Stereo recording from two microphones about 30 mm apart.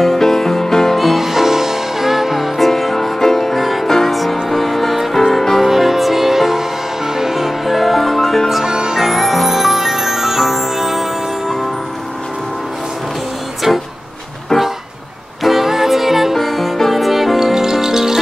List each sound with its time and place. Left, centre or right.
0.0 s music: centre
0.9 s music: centre
4.1 s music: centre
8.6 s music: right
8.9 s music: centre
13.7 s music: centre
15.4 s music: centre